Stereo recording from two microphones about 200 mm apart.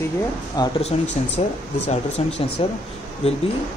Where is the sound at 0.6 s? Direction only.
30° left (ahead or behind).